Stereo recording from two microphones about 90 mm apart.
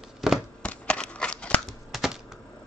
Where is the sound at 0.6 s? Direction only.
10° left (ahead or behind).